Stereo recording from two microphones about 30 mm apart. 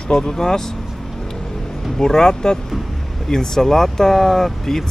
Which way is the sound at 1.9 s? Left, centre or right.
Centre.